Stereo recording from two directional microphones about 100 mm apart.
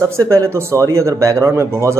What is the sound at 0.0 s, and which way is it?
Speech, 30° right (ahead or behind).